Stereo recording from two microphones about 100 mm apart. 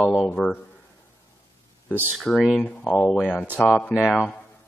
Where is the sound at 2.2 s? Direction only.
5° left (ahead or behind).